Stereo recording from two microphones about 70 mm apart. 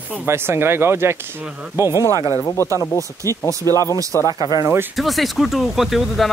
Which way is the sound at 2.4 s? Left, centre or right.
Left.